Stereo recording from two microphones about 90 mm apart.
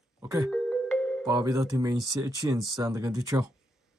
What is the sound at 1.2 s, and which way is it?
Speech, 45° right (ahead or behind).